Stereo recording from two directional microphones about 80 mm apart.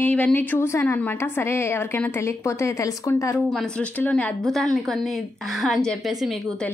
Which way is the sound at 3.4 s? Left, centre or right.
Centre.